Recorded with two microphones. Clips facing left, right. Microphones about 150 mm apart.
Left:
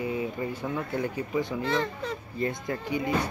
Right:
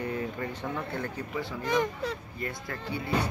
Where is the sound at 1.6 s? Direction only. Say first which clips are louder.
Right 4 dB; 15° right (ahead or behind).